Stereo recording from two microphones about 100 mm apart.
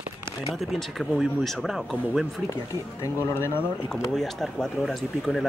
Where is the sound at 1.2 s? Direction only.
Centre (ahead or behind).